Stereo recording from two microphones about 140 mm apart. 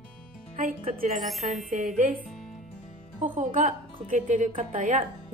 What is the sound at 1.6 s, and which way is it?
Speech, 65° right (ahead or behind).